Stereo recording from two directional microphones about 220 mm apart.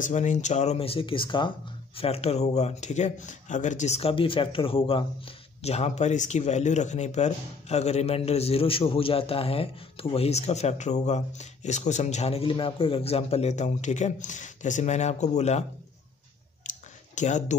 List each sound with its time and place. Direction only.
0.0 s speech: 35° left (ahead or behind)
16.6 s a sound: 35° left (ahead or behind)
17.1 s speech: 35° left (ahead or behind)